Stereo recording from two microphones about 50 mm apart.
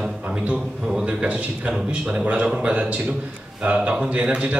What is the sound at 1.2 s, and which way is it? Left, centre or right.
A man's voice, right.